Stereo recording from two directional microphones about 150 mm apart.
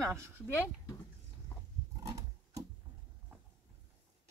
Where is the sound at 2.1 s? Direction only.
20° right (ahead or behind).